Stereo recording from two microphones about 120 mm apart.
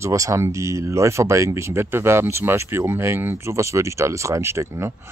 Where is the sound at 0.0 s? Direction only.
25° right (ahead or behind).